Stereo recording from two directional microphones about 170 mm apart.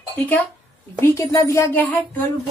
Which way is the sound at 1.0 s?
15° left (ahead or behind).